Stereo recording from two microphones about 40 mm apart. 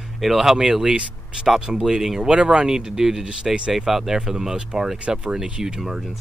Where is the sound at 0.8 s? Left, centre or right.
Centre.